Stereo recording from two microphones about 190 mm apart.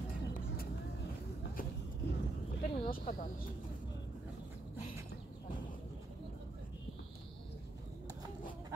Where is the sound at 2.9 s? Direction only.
50° left (ahead or behind).